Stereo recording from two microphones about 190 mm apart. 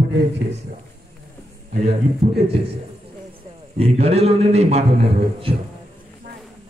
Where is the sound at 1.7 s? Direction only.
35° right (ahead or behind).